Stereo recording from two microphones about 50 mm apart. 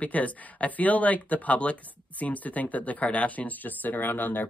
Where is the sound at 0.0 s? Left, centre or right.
Left.